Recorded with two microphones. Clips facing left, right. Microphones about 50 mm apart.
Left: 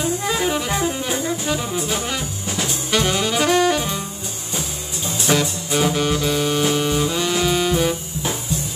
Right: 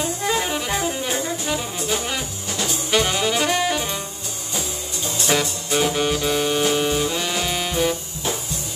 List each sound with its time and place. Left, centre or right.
0.0 s music: centre
2.9 s saxophone: centre
4.6 s music: centre
5.3 s saxophone: centre